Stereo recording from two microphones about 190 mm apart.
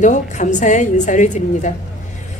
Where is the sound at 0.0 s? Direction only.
40° left (ahead or behind).